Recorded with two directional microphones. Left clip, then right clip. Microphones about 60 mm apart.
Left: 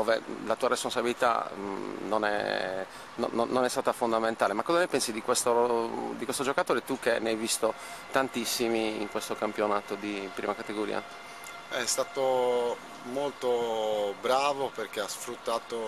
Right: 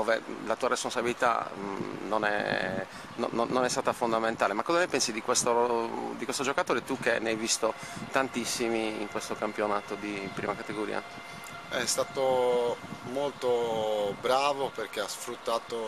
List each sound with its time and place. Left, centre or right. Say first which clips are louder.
0.0 s speech: left 1 dB; left
9.4 s speech: left 1 dB; left
11.7 s speech: even; centre